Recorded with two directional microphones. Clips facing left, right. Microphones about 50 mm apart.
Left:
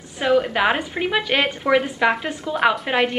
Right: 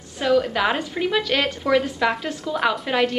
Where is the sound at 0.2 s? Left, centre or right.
Left.